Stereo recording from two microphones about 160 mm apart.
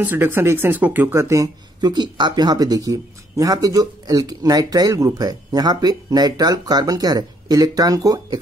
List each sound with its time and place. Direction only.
0.0 s speech: 15° right (ahead or behind)